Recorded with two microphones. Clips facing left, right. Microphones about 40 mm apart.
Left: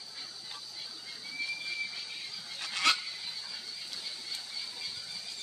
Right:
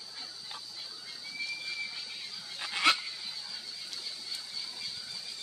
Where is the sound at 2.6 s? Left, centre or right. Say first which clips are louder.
Right 2 dB; centre.